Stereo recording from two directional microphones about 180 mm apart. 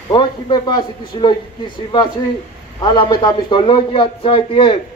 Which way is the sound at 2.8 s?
25° left (ahead or behind).